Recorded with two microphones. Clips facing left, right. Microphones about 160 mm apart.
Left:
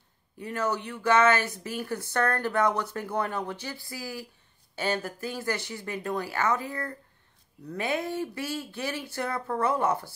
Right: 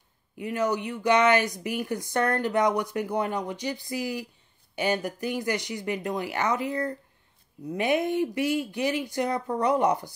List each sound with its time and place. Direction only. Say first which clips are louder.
0.4 s a woman's voice: right 3 dB; 15° right (ahead or behind)